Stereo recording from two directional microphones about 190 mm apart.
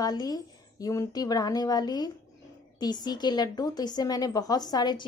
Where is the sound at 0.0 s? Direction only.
20° left (ahead or behind).